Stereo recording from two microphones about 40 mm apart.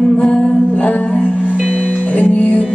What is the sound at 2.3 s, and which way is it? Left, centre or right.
Music, left.